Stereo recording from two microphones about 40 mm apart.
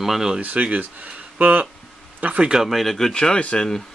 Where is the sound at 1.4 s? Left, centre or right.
Right.